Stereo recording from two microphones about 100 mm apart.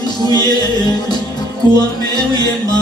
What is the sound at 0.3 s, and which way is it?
Music, 45° left (ahead or behind).